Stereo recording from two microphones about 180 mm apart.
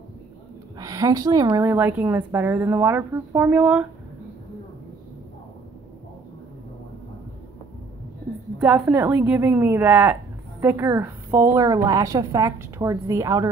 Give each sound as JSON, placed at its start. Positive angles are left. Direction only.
{"t": 0.7, "sound": "a woman's voice", "side_deg": -20}
{"t": 8.5, "sound": "a woman's voice", "side_deg": -5}